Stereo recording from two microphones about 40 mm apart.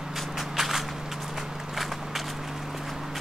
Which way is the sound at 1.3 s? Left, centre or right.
Centre.